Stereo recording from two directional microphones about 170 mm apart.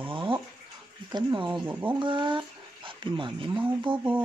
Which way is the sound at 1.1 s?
25° right (ahead or behind).